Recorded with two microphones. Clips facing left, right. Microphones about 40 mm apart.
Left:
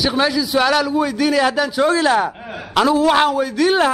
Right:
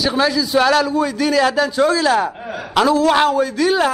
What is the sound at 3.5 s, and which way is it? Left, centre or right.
Speech, left.